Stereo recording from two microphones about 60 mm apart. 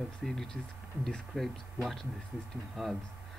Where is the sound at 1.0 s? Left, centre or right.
Centre.